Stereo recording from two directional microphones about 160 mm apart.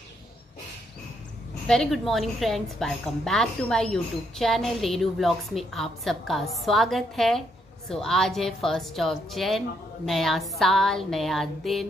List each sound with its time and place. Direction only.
1.7 s a woman's voice: centre (ahead or behind)